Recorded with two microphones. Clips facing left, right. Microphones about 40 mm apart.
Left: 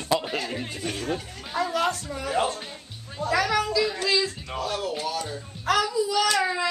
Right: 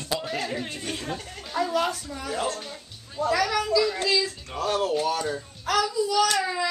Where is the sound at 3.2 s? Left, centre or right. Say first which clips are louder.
Even; centre.